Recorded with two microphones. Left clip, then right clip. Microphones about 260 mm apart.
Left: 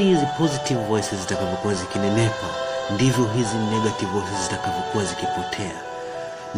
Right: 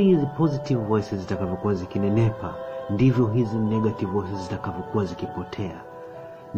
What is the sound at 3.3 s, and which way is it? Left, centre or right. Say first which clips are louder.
Speech: left 3 dB; left.